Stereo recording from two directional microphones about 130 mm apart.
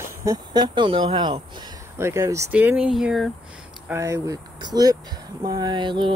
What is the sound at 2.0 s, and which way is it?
Speech, 25° right (ahead or behind).